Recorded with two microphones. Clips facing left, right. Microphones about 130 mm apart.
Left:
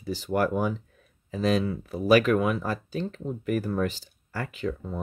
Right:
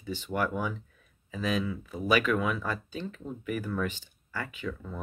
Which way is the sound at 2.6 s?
35° left (ahead or behind).